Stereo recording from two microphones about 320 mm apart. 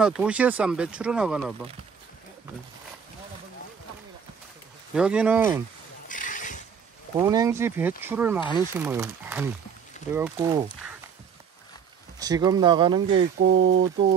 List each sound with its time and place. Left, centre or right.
0.0 s speech: centre
4.9 s speech: centre
6.0 s a sound: left
7.2 s speech: centre
12.2 s speech: centre
13.0 s speech: right